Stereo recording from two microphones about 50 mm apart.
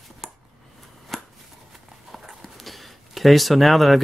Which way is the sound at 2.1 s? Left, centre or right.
Centre.